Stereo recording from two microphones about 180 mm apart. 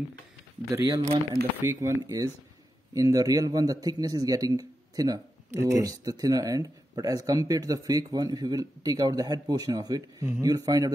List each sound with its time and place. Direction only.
0.7 s a man's voice: 20° right (ahead or behind)